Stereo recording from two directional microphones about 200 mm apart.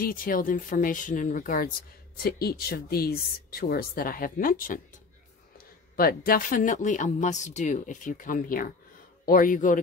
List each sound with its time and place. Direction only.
0.0 s speech: 45° left (ahead or behind)
5.9 s speech: 45° left (ahead or behind)